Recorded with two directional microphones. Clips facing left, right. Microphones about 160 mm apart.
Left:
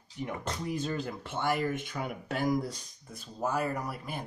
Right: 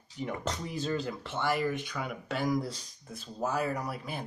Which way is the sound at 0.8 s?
10° left (ahead or behind).